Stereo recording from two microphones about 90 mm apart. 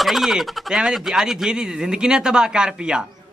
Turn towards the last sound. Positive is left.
turn(degrees=-10)  # may be behind; listen again after turning